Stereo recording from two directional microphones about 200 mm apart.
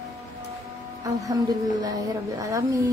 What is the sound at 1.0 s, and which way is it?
A woman's voice, 15° right (ahead or behind).